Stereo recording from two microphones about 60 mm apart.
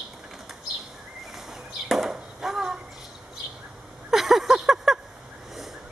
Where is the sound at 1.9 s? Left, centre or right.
Centre.